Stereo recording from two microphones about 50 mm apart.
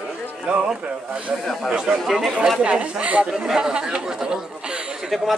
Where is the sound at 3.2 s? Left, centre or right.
Centre.